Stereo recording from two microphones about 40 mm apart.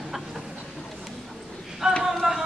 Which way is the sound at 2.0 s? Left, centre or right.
Centre.